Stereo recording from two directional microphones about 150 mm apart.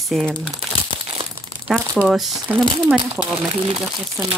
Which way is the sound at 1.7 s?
5° right (ahead or behind).